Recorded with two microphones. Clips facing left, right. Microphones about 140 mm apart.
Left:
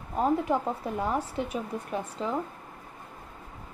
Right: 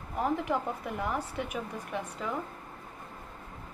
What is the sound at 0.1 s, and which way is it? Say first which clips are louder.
Speech: left 4 dB; 25° left (ahead or behind).